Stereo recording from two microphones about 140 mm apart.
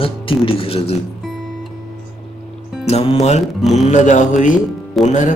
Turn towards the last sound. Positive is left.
turn(degrees=0)  # may be behind; listen again after turning